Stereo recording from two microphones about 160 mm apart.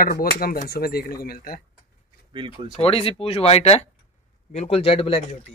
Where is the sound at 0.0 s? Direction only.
65° left (ahead or behind).